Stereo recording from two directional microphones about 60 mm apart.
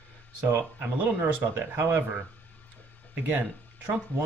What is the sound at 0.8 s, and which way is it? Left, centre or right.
Speech, right.